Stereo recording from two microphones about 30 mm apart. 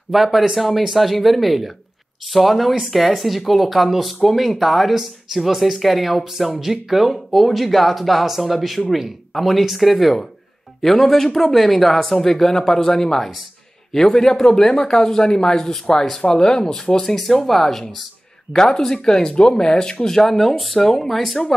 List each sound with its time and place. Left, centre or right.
0.6 s speech: centre; by 16.6 s left
17.0 s speech: centre; by 20.2 s left
20.2 s speech: centre